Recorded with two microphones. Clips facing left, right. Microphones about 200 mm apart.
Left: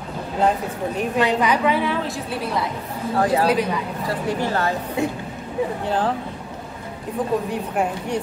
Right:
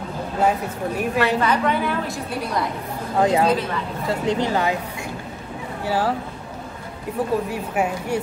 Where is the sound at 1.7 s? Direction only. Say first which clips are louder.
Left 1 dB; centre (ahead or behind).